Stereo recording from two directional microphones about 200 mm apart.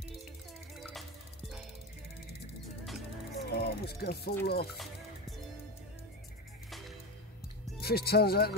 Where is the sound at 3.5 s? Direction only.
55° left (ahead or behind).